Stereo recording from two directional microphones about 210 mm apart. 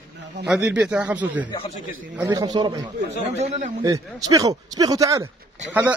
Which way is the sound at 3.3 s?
30° right (ahead or behind).